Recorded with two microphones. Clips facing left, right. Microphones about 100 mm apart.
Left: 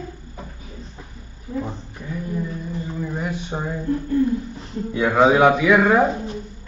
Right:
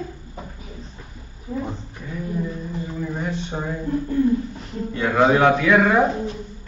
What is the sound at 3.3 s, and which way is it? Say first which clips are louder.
Speech: even; 10° left (ahead or behind).